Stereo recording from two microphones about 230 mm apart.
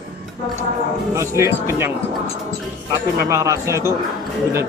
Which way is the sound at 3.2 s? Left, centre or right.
Centre.